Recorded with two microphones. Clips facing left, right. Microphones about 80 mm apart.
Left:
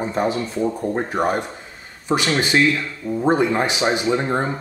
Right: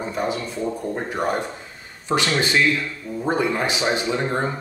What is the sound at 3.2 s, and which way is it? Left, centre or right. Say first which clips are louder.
Speech: left 4 dB; left.